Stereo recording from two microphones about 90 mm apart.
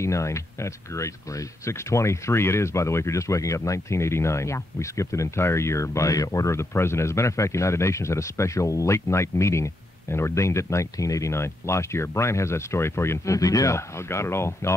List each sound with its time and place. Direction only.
0.0 s speech: 35° left (ahead or behind)